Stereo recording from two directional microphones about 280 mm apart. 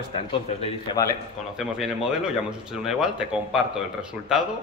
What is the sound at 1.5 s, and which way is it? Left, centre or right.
A man's voice, centre.